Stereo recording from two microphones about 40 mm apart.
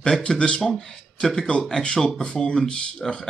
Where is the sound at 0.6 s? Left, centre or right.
Centre.